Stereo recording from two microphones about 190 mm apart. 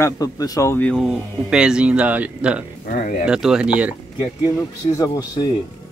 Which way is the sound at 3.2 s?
5° right (ahead or behind).